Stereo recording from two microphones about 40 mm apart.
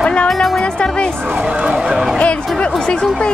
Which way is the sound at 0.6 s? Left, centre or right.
Left.